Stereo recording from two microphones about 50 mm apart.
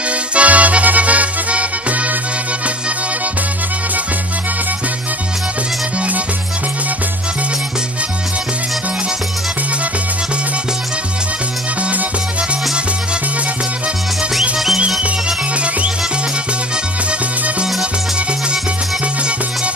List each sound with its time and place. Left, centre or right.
0.3 s music: right
15.0 s music: right